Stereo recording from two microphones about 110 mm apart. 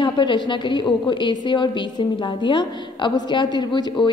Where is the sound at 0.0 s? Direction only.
45° left (ahead or behind).